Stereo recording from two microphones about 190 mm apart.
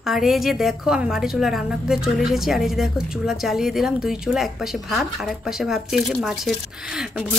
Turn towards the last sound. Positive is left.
turn(degrees=0)  # may be behind; listen again after turning